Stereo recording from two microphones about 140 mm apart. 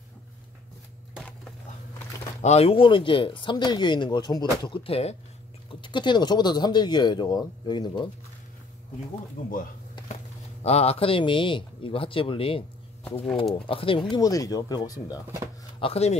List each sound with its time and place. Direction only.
2.4 s speech: 50° left (ahead or behind)
2.7 s speech: 35° left (ahead or behind)
9.4 s speech: 70° left (ahead or behind)
10.6 s speech: 50° left (ahead or behind)
13.7 s speech: 40° left (ahead or behind)
14.1 s speech: 25° left (ahead or behind)
15.8 s speech: 50° left (ahead or behind)